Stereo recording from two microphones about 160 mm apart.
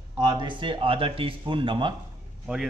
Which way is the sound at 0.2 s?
25° right (ahead or behind).